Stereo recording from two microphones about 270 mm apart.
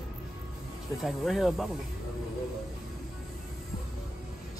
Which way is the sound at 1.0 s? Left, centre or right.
Centre.